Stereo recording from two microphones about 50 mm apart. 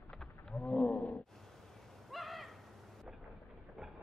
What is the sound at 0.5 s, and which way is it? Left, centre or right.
Roaring cats, left.